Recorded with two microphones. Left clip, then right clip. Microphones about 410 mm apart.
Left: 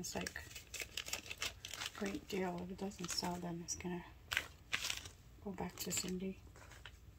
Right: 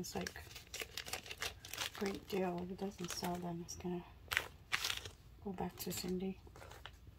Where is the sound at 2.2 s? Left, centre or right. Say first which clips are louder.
Right 2 dB; centre.